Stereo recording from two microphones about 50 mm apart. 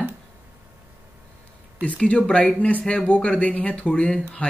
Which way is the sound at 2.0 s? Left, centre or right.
Left.